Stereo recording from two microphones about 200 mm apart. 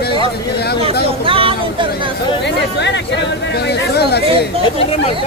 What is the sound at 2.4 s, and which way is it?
Speech, 60° left (ahead or behind).